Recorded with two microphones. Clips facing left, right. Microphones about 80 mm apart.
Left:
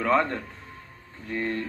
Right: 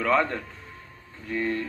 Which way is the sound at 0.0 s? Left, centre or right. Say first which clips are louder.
Even; left.